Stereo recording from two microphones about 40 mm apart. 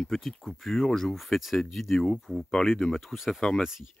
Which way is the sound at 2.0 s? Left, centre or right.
Centre.